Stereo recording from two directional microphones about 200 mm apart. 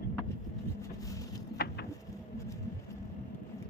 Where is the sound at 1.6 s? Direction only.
50° left (ahead or behind).